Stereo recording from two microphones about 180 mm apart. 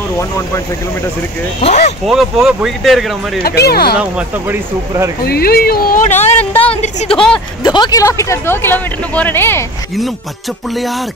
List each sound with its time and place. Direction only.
1.6 s speech: 40° left (ahead or behind)
2.0 s speech: centre (ahead or behind)
3.4 s speech: 60° left (ahead or behind)
4.0 s speech: 15° right (ahead or behind)
5.2 s a woman's voice: 60° left (ahead or behind); by 7.1 s 35° left (ahead or behind)
7.1 s speech: 5° left (ahead or behind)
7.6 s speech: 25° left (ahead or behind)